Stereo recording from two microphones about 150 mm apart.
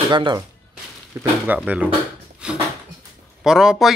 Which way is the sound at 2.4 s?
5° right (ahead or behind).